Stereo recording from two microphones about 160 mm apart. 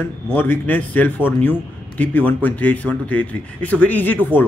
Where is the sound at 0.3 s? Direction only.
10° left (ahead or behind).